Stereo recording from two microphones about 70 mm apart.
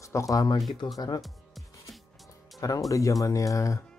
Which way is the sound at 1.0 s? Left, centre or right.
Left.